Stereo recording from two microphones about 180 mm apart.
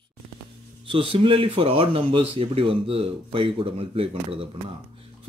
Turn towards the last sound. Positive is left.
turn(degrees=-30)  # may be behind; listen again after turning